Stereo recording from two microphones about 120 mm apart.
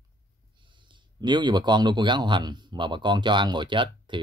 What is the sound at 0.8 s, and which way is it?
A man's voice, 40° right (ahead or behind).